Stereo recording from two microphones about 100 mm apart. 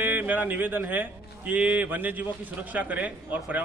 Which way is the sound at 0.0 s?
20° right (ahead or behind).